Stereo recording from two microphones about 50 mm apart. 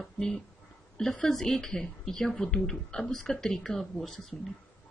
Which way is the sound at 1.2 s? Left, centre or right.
Centre.